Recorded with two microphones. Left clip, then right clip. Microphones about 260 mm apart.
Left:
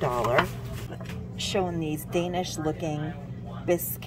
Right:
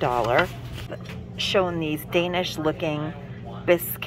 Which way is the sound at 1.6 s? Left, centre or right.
Right.